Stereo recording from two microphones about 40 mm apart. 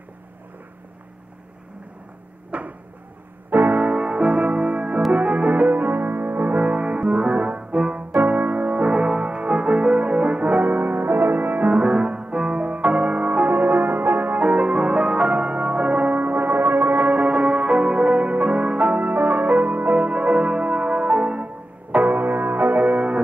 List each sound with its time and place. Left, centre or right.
2.5 s a sound: right
3.4 s music: right
4.0 s music: right
8.1 s music: right
11.7 s music: right
17.0 s music: right
21.9 s music: right